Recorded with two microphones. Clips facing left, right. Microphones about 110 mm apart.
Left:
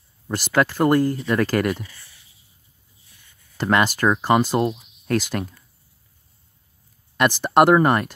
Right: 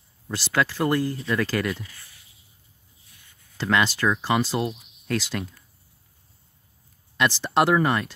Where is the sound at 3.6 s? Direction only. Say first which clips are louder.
Left 3 dB; 45° left (ahead or behind).